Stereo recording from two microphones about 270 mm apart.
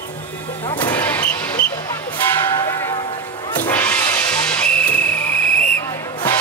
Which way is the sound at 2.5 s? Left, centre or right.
Centre.